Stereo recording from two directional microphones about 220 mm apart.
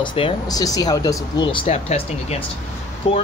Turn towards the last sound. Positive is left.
turn(degrees=25)  # may be behind; listen again after turning